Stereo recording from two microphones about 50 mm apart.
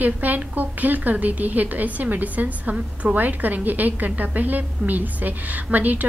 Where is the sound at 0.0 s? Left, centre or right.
Right.